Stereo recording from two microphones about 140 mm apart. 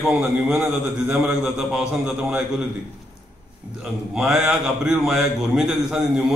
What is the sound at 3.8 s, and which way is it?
A man's voice, 5° right (ahead or behind).